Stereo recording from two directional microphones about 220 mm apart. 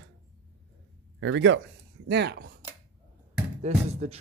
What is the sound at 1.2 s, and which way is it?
Speech, 55° right (ahead or behind).